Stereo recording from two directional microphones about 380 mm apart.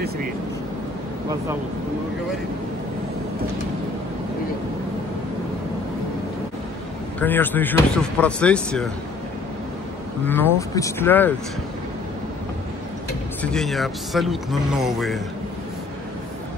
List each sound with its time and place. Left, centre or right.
7.2 s speech: centre
10.2 s speech: centre
13.4 s speech: centre